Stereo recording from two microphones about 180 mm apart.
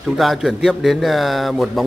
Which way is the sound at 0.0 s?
Centre (ahead or behind).